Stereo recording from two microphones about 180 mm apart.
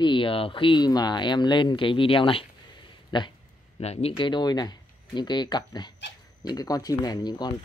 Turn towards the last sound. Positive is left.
turn(degrees=25)  # may be behind; listen again after turning